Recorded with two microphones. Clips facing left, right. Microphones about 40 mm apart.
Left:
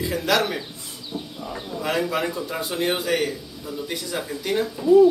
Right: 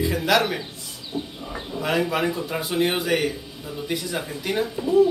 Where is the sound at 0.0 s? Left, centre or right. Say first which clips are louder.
Right 1 dB; centre.